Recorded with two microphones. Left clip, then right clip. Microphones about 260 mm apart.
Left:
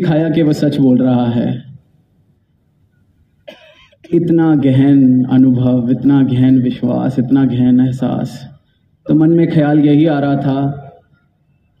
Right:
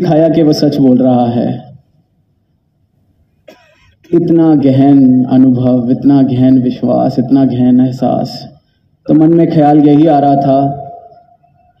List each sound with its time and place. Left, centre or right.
0.0 s a man's voice: left
3.4 s cough: centre
4.2 s a man's voice: left